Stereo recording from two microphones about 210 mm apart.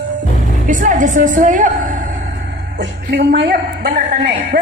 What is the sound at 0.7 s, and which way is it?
A woman's voice, 35° right (ahead or behind).